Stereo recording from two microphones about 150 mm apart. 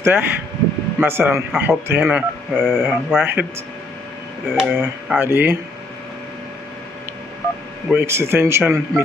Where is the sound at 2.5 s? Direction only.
5° left (ahead or behind).